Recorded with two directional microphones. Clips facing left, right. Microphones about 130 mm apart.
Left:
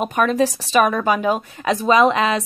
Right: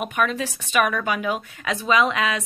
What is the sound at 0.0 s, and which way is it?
A woman's voice, 40° left (ahead or behind).